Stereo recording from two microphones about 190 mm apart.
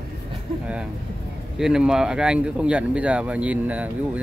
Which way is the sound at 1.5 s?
5° right (ahead or behind).